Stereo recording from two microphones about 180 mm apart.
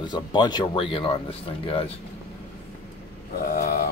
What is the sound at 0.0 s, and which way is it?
Speech, 25° left (ahead or behind).